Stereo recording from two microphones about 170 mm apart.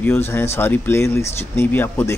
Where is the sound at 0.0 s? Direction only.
15° left (ahead or behind).